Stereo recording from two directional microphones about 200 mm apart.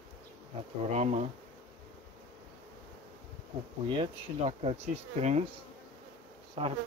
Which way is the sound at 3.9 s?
25° right (ahead or behind).